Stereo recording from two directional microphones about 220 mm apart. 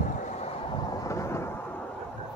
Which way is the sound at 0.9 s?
15° left (ahead or behind).